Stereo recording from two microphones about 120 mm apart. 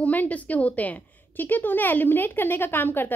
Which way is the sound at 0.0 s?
15° left (ahead or behind).